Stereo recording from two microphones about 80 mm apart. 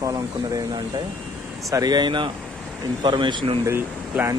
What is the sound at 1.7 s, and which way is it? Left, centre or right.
Speech, right.